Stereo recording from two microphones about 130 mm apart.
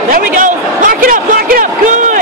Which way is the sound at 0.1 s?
90° right.